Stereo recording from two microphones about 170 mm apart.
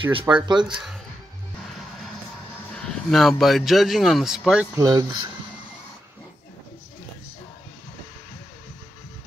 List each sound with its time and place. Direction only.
0.3 s speech: 25° right (ahead or behind)
0.7 s speech: 5° right (ahead or behind)
2.7 s speech: centre (ahead or behind)
4.7 s speech: 20° right (ahead or behind)